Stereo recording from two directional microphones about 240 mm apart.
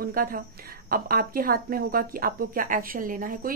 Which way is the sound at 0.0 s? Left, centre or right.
Right.